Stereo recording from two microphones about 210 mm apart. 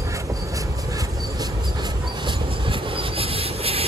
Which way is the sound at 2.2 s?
25° right (ahead or behind).